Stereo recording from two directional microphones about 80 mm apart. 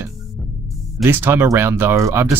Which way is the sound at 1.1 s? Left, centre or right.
Right.